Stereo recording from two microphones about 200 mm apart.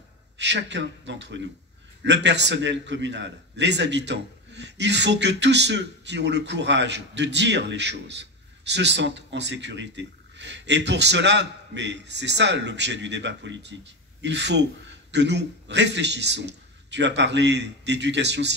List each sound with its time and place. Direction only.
0.4 s a man's voice: 60° right (ahead or behind)